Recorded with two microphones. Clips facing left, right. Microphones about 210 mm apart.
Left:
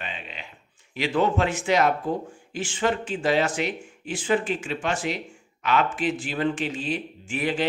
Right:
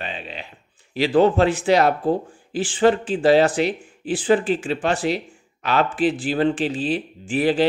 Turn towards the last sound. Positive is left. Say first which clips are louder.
# right 7 dB
turn(degrees=-35)  # may be behind; listen again after turning